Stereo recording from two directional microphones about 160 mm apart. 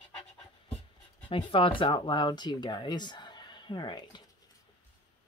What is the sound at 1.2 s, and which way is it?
Speech, 35° left (ahead or behind).